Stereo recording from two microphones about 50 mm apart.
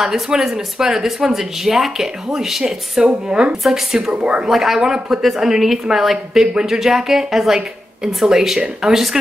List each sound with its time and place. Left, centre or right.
0.0 s speech: centre
3.6 s speech: centre
4.1 s speech: right
4.5 s speech: centre